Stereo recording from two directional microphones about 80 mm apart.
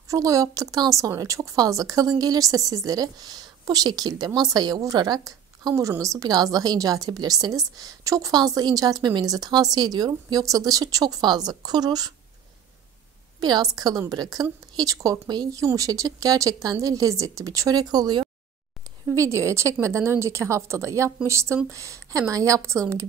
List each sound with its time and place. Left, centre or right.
0.1 s a woman's voice: right
5.8 s a woman's voice: right
8.4 s a woman's voice: right
13.4 s a woman's voice: right
19.1 s a woman's voice: right